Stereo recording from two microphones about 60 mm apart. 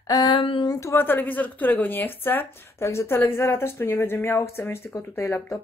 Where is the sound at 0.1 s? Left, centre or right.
Left.